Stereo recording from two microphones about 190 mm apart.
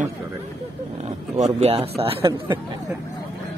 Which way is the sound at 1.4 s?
35° right (ahead or behind).